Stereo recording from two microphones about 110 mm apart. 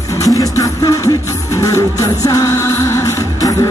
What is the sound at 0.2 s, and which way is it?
Music, 30° left (ahead or behind).